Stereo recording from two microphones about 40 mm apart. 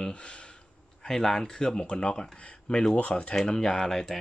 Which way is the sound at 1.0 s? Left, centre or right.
Centre.